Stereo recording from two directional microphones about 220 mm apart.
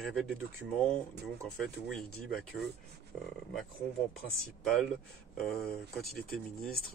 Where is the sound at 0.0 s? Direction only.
Centre (ahead or behind).